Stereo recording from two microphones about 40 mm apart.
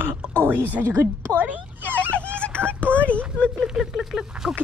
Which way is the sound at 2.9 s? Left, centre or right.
Left.